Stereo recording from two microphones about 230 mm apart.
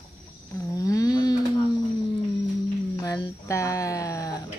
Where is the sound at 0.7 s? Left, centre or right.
Centre.